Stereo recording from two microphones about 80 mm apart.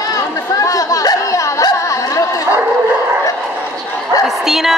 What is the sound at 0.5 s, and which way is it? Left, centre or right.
Chatter, left.